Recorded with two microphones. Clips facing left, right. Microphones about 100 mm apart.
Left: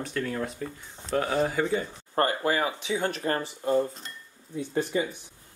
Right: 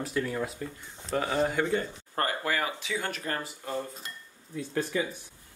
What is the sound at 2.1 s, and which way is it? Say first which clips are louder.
Speech: left 5 dB; 30° left (ahead or behind).